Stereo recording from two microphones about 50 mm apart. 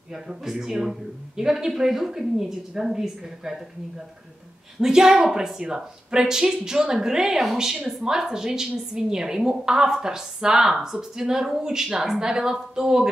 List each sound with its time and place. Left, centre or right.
0.1 s a woman's voice: centre
4.7 s a woman's voice: centre